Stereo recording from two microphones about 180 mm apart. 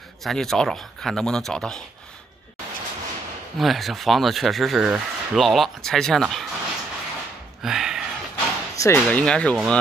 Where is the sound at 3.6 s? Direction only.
Centre (ahead or behind).